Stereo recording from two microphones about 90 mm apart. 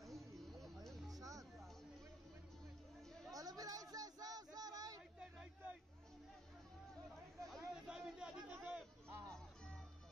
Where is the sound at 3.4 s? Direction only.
45° right (ahead or behind).